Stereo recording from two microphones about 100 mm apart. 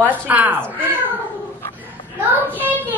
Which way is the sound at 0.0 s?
20° right (ahead or behind).